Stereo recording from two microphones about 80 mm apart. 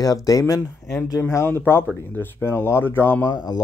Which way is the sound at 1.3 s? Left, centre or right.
Left.